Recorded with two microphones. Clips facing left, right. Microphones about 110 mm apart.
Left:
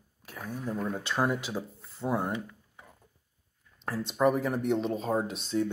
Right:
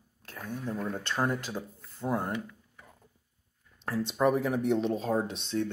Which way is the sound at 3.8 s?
Centre (ahead or behind).